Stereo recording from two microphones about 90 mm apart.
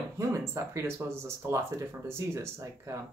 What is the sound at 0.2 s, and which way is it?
Speech, 35° right (ahead or behind).